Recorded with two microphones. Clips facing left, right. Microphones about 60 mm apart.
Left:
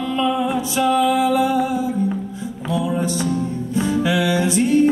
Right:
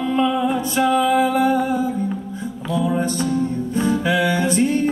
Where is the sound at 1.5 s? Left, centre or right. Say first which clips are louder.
Right 1 dB; centre.